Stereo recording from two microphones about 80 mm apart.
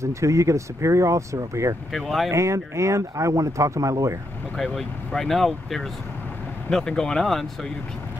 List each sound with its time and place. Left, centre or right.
0.0 s speech: right
1.9 s speech: centre
2.3 s speech: right
4.6 s speech: centre